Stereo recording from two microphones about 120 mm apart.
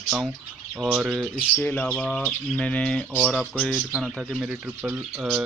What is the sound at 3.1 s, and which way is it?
Speech, 10° right (ahead or behind).